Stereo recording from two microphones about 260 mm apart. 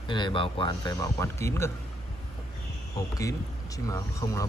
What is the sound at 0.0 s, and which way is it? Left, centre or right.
Speech, centre.